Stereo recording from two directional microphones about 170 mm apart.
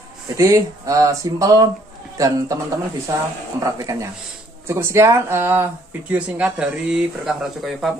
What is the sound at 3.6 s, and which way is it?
A woman's voice, 20° right (ahead or behind).